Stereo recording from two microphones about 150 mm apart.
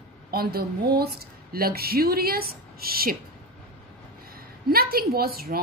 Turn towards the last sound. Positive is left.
turn(degrees=-90)